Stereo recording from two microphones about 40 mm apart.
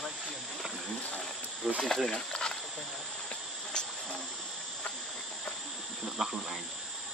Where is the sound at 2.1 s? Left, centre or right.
Left.